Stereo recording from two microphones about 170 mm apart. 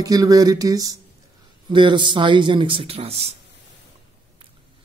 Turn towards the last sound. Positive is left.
turn(degrees=-35)  # may be behind; listen again after turning